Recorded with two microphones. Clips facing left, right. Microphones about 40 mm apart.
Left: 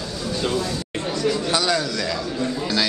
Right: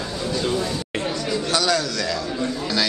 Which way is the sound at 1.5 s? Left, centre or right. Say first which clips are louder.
Even; centre.